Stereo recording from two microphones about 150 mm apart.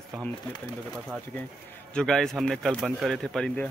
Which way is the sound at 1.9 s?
5° left (ahead or behind).